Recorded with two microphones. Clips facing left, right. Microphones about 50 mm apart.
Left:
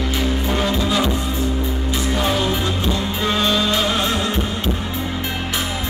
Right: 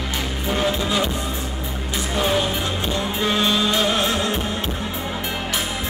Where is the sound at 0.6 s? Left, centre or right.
Centre.